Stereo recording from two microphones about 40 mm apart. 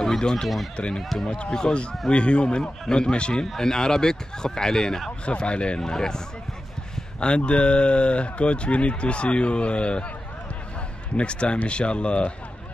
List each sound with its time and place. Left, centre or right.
0.2 s speech: centre
5.2 s speech: left
5.8 s speech: centre
7.2 s speech: left
11.1 s speech: left